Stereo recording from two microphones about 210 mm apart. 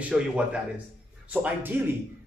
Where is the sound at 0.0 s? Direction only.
5° right (ahead or behind).